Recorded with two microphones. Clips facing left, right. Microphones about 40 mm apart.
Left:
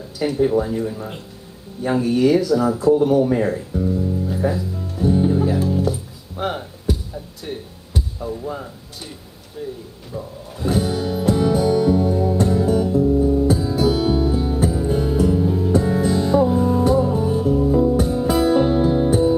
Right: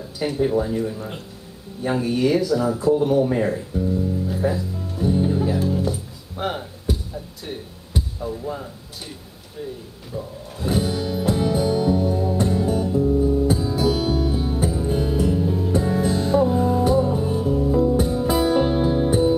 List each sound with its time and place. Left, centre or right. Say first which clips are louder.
0.2 s speech: left 3 dB; centre
5.9 s music: left 3 dB; centre
8.2 s speech: left 2 dB; centre
10.1 s roar: even; centre
10.9 s music: left 2 dB; centre
11.5 s music: left 3 dB; centre
13.8 s music: left 3 dB; centre
14.3 s music: left 3 dB; centre
18.2 s music: left 4 dB; centre